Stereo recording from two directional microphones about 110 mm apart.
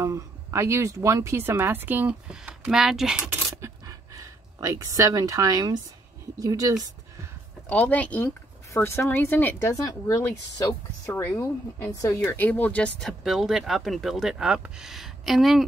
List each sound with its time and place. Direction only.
0.0 s speech: 25° right (ahead or behind); by 3.2 s 5° right (ahead or behind)
3.6 s a sound: 30° right (ahead or behind)
6.4 s speech: 35° right (ahead or behind)
7.6 s speech: 15° left (ahead or behind); by 10.7 s 35° left (ahead or behind)
11.1 s speech: 20° left (ahead or behind)
13.2 s speech: centre (ahead or behind)